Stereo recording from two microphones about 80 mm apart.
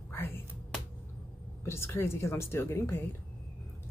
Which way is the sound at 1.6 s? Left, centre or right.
Left.